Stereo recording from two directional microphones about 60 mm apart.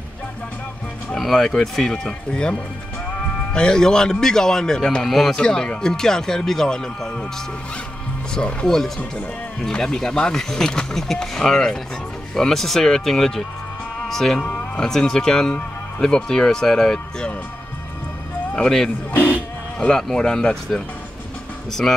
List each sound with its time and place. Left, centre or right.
1.1 s speech: centre
8.4 s speech: centre
18.5 s a man's voice: centre
19.3 s music: left
20.0 s speech: centre